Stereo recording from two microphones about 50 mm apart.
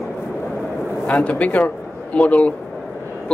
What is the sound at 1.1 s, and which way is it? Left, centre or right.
Speech, left.